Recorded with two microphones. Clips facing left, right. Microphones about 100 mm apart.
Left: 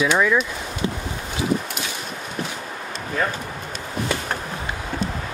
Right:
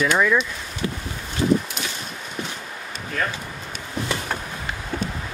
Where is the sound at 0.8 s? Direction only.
25° left (ahead or behind).